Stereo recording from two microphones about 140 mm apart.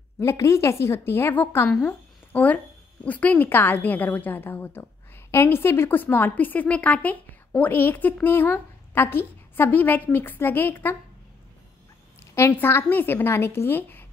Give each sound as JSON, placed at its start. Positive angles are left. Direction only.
{"t": 0.2, "sound": "a woman's voice", "side_deg": 20}
{"t": 12.4, "sound": "a woman's voice", "side_deg": 15}